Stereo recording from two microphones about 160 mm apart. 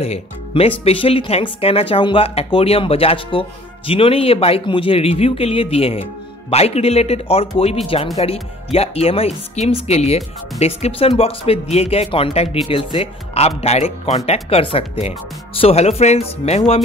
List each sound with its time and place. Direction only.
0.0 s speech: 35° left (ahead or behind)